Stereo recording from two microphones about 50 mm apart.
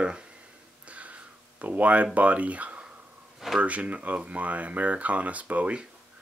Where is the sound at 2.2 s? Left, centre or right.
Right.